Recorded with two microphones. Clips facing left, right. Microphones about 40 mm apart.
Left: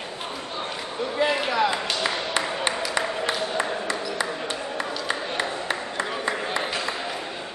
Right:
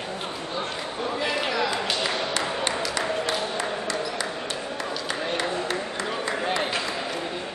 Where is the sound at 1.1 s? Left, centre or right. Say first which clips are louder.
Left 4 dB; centre.